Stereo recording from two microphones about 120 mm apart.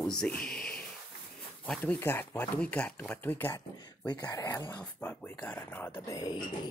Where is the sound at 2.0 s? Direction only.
20° left (ahead or behind).